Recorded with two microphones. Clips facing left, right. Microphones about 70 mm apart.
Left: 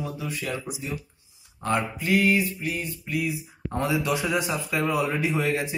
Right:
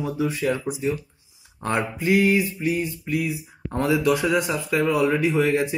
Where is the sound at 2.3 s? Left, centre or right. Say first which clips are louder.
Right 3 dB; right.